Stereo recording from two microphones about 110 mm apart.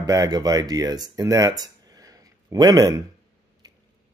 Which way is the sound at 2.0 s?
35° right (ahead or behind).